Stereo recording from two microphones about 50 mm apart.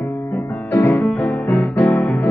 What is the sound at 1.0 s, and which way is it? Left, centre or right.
Music, left.